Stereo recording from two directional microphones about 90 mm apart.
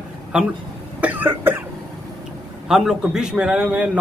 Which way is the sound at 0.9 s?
15° right (ahead or behind).